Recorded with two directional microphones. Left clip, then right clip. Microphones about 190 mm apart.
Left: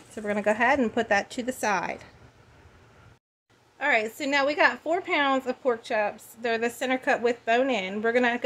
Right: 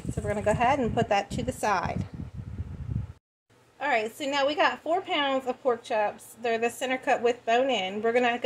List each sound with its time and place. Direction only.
0.1 s a woman's voice: 35° left (ahead or behind)
3.8 s a woman's voice: 30° left (ahead or behind)